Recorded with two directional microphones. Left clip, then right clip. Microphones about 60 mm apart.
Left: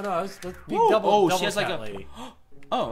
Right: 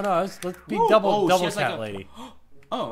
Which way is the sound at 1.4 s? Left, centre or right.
Left.